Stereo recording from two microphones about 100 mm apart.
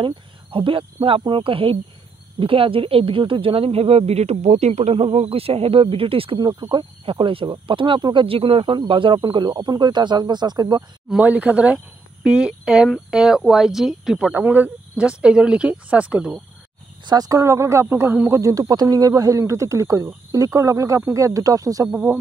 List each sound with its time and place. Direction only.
0.0 s speech: 60° right (ahead or behind)
6.7 s speech: 55° right (ahead or behind)
11.2 s speech: 15° right (ahead or behind)
14.3 s speech: 20° right (ahead or behind)
17.0 s speech: 45° right (ahead or behind)
17.3 s speech: 30° right (ahead or behind)